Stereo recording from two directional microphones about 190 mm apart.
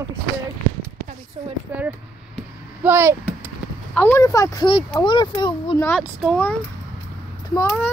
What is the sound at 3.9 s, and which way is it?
Speech, 10° left (ahead or behind).